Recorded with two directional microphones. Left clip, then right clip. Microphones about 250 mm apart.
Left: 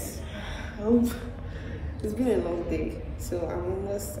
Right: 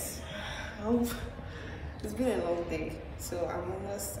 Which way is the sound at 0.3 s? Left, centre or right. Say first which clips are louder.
Even; centre.